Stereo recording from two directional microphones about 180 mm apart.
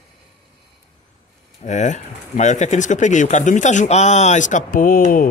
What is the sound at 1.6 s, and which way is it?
Speech, 40° left (ahead or behind).